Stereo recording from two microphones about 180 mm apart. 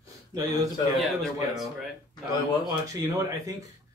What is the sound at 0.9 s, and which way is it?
Speech, centre (ahead or behind).